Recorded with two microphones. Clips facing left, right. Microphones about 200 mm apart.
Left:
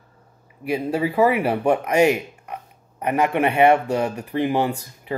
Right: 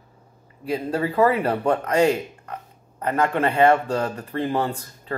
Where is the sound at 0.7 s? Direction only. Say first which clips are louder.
Left 2 dB; 10° left (ahead or behind).